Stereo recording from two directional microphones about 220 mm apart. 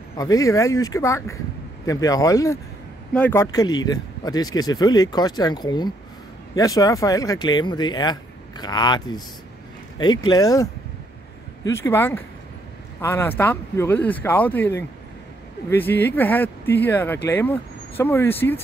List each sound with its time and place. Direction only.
0.2 s speech: 15° left (ahead or behind)